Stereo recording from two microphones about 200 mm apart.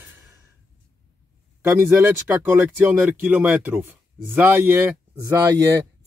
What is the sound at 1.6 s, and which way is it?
Speech, 10° right (ahead or behind).